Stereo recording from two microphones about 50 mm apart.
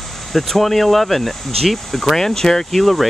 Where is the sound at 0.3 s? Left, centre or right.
Centre.